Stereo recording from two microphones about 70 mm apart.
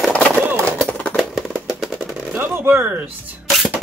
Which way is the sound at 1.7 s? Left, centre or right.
Centre.